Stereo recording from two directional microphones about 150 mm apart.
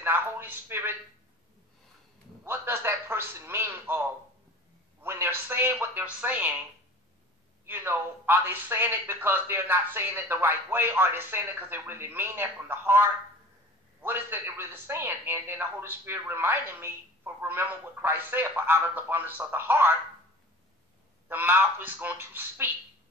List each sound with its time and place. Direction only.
0.0 s speech: 15° right (ahead or behind)
2.4 s speech: 15° right (ahead or behind)
5.0 s speech: 15° right (ahead or behind)
7.6 s speech: 15° right (ahead or behind)
21.3 s speech: 15° right (ahead or behind)